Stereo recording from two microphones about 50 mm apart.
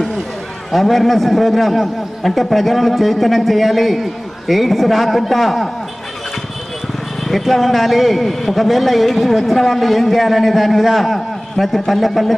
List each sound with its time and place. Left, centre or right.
0.7 s a man's voice: centre
7.2 s a man's voice: centre